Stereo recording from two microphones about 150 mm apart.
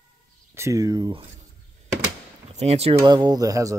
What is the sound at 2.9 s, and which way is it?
Speech, 30° right (ahead or behind).